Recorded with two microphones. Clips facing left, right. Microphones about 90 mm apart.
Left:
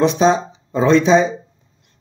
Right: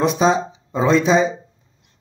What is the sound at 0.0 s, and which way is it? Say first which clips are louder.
A man's voice: left 2 dB; 5° right (ahead or behind).